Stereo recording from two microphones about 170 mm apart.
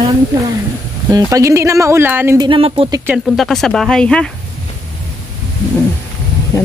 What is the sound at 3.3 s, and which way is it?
Speech, centre (ahead or behind).